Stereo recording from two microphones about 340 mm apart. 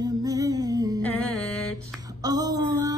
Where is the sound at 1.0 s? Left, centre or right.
Centre.